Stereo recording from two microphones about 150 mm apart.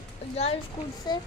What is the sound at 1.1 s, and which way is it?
Speech, 30° left (ahead or behind).